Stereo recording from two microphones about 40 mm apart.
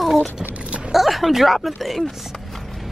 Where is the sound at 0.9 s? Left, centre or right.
Centre.